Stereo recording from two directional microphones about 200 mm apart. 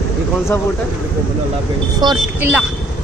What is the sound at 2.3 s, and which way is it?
Speech, 10° right (ahead or behind).